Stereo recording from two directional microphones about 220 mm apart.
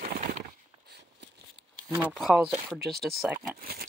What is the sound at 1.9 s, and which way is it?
Shuffling cards, 5° right (ahead or behind).